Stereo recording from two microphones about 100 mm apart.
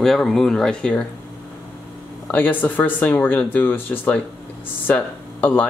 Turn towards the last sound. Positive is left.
turn(degrees=15)  # may be behind; listen again after turning